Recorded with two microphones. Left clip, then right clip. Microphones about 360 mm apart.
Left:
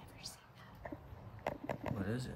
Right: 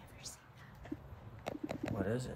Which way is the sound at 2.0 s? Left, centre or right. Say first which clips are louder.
Right 4 dB; centre.